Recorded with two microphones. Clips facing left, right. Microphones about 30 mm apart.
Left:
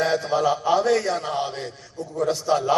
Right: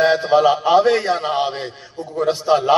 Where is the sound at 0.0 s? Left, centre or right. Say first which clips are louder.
Right 7 dB; right.